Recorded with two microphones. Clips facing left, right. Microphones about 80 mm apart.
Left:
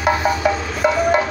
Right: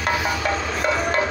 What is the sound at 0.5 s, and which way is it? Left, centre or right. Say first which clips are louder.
Music: left 4 dB; centre.